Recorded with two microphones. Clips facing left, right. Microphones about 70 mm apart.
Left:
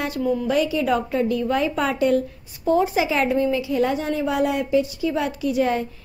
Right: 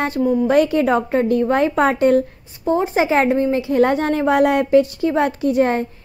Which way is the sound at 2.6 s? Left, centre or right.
Right.